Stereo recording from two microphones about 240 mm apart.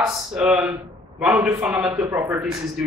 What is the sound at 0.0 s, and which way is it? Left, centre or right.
A man's voice, centre.